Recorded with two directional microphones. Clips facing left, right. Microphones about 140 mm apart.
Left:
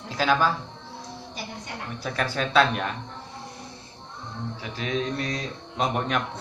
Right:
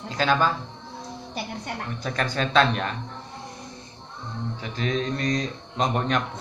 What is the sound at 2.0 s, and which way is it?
Speech, 5° left (ahead or behind).